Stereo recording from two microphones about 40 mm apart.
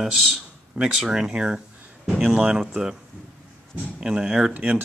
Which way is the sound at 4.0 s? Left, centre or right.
Right.